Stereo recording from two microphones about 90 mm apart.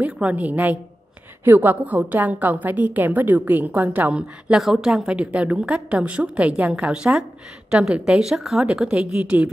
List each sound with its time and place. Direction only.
0.0 s a woman's voice: 15° right (ahead or behind)